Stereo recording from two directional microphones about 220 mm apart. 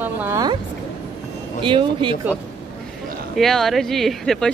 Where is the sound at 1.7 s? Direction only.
20° right (ahead or behind).